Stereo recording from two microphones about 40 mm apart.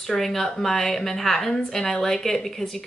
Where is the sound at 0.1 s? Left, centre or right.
Centre.